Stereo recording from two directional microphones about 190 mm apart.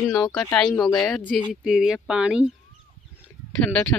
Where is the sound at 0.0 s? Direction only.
Centre (ahead or behind).